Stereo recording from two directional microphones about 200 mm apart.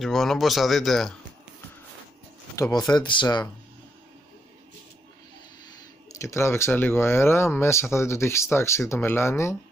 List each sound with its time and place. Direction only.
0.0 s speech: centre (ahead or behind)
2.5 s speech: 15° left (ahead or behind)
6.1 s speech: 15° left (ahead or behind)